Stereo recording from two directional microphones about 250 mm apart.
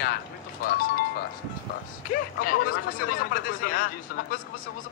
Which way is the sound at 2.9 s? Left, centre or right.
Left.